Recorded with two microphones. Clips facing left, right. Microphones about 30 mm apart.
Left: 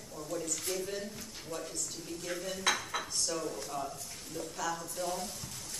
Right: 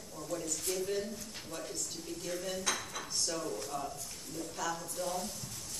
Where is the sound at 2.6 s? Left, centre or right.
Left.